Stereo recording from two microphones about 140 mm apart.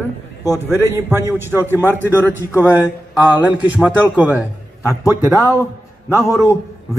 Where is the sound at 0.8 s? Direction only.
15° right (ahead or behind).